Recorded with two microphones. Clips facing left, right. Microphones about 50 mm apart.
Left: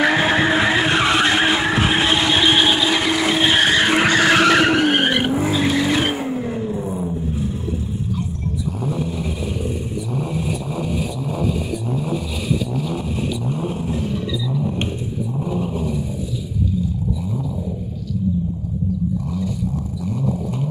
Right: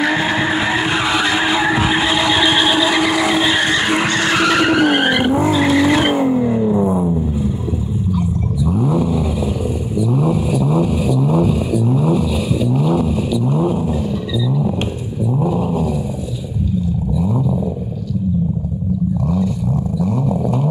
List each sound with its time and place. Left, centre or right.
0.7 s vehicle: left
1.7 s vehicle: centre
3.9 s vehicle: centre
5.6 s vehicle: right
6.1 s vehicle: centre
11.2 s vehicle: centre
15.4 s dog: centre